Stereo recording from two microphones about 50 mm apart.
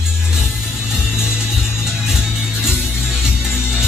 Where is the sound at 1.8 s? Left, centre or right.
Centre.